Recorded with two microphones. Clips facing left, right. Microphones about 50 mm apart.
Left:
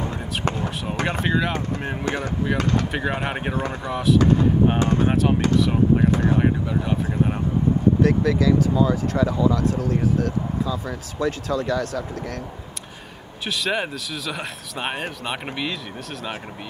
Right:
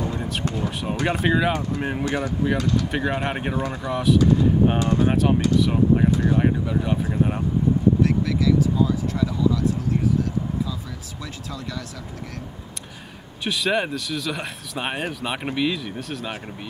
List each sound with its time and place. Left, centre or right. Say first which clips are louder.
1.2 s speech: right 3 dB; centre
2.0 s speech: even; left
2.9 s speech: right 1 dB; centre
4.7 s speech: left 1 dB; left
5.1 s speech: even; centre
8.0 s speech: left 2 dB; left
13.5 s speech: right 2 dB; centre